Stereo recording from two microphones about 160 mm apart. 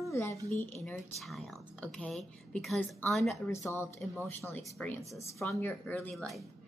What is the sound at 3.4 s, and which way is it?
Speech, 15° left (ahead or behind).